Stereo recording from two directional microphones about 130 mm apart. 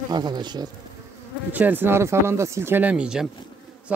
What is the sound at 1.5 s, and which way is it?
Speech, 15° right (ahead or behind).